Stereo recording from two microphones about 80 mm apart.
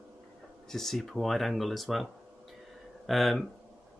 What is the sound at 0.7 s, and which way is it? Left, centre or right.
Speech, centre.